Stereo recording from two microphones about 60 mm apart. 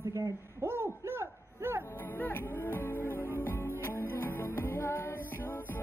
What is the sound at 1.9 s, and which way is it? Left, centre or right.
Music, left.